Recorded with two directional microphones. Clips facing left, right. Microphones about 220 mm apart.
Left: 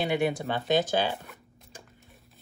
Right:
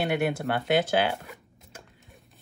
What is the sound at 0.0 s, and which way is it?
Speech, centre (ahead or behind).